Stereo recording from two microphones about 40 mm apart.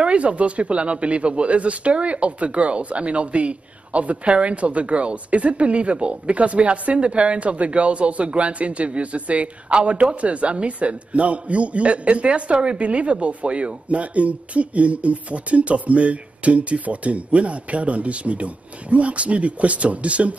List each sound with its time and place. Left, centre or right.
0.0 s speech: right